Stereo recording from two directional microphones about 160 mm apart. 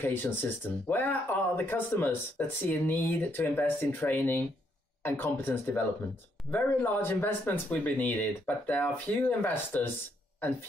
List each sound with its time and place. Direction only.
0.0 s speech: 15° left (ahead or behind)